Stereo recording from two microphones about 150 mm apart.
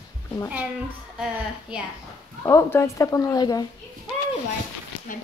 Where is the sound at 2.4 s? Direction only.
20° left (ahead or behind).